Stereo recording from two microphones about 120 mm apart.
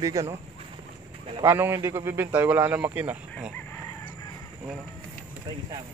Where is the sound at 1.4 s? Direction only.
20° right (ahead or behind).